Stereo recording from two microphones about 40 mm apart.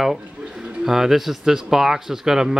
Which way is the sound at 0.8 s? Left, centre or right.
Centre.